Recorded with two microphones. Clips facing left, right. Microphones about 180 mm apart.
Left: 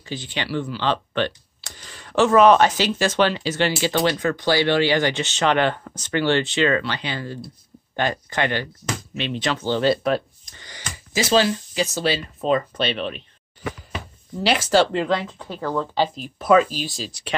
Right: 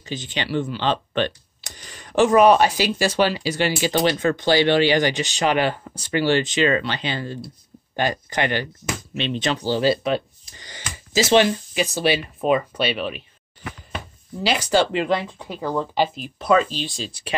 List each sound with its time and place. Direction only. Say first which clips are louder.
0.0 s speech: right 1 dB; 20° right (ahead or behind)
9.7 s speech: left 1 dB; 5° right (ahead or behind)
10.6 s speech: even; 25° right (ahead or behind); by 13.2 s 5° right (ahead or behind)
14.4 s speech: left 1 dB; centre (ahead or behind)
14.9 s speech: even; 15° right (ahead or behind)
16.3 s speech: left 2 dB; 5° left (ahead or behind)